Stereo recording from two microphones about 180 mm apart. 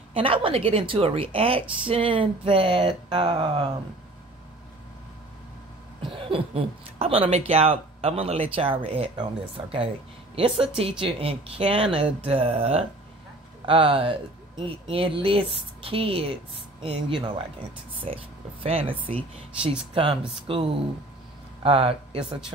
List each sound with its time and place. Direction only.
0.1 s speech: 30° right (ahead or behind)
6.0 s speech: 30° right (ahead or behind)